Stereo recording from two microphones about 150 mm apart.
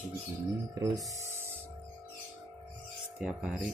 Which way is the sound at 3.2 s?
5° right (ahead or behind).